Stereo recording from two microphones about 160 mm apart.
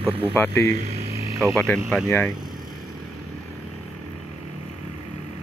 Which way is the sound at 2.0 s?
15° left (ahead or behind).